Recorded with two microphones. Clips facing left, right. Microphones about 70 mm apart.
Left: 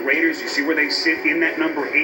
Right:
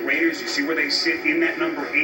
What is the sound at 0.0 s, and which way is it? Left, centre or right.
Speech, left.